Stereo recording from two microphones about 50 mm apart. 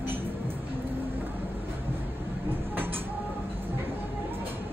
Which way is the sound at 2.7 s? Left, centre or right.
Right.